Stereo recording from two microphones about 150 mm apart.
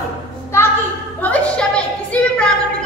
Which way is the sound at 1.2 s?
10° left (ahead or behind).